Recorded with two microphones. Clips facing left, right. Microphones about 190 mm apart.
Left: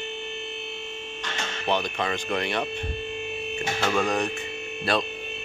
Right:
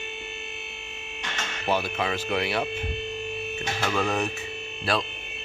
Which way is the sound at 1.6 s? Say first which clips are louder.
Even; 5° right (ahead or behind).